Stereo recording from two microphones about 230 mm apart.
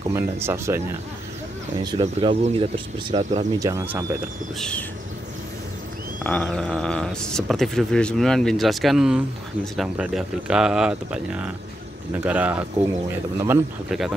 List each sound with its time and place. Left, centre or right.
0.1 s speech: centre
1.9 s speech: right
3.5 s speech: centre
4.6 s speech: centre
6.2 s speech: centre